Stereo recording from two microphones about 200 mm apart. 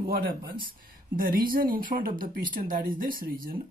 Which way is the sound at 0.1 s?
50° right (ahead or behind).